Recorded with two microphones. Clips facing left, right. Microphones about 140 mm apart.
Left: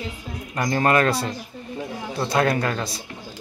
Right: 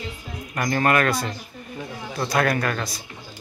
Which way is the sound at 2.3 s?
25° left (ahead or behind).